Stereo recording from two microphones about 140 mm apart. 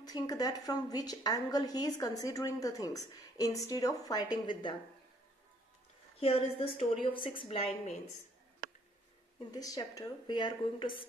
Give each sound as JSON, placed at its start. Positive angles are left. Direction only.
{"t": 0.0, "sound": "a woman's voice", "side_deg": 25}
{"t": 6.1, "sound": "a woman's voice", "side_deg": 45}
{"t": 9.5, "sound": "a woman's voice", "side_deg": 25}